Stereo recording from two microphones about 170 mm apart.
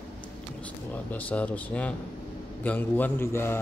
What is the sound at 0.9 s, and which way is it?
A man's voice, 10° left (ahead or behind).